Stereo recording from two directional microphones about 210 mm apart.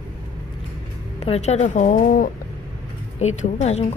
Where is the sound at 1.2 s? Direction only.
30° left (ahead or behind).